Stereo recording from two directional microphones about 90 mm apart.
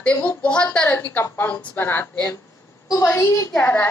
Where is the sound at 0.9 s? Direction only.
25° left (ahead or behind).